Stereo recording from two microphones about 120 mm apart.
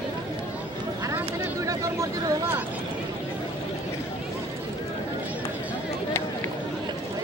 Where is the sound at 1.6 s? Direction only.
25° right (ahead or behind).